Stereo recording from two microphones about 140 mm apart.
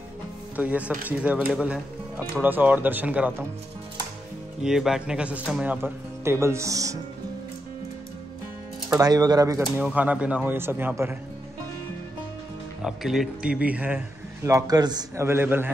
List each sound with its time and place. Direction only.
0.6 s a man's voice: 10° right (ahead or behind)
4.6 s a man's voice: 5° right (ahead or behind); by 7.0 s 25° right (ahead or behind)
9.0 s speech: 30° right (ahead or behind)
9.8 s a man's voice: 10° right (ahead or behind)
12.8 s a man's voice: centre (ahead or behind); by 15.2 s 30° right (ahead or behind)
15.2 s a man's voice: 15° right (ahead or behind)